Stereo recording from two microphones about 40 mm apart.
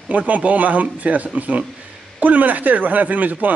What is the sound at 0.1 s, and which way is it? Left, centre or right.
A woman's voice, right.